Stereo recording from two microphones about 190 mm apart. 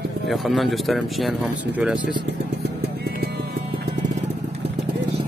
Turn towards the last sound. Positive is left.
turn(degrees=-55)  # may be behind; listen again after turning